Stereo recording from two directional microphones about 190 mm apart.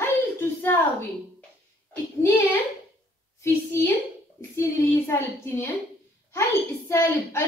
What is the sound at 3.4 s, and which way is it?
A woman's voice, 15° left (ahead or behind).